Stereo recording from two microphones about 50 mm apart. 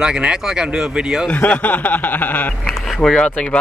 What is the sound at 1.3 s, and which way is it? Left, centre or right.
Speech, left.